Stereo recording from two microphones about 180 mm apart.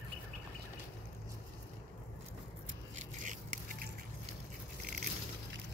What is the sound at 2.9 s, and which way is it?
Scrape, 45° right (ahead or behind).